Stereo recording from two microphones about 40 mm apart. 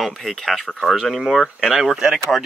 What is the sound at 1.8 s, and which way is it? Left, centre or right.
Speech, centre.